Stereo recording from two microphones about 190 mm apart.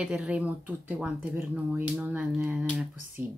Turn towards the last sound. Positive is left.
turn(degrees=-5)  # may be behind; listen again after turning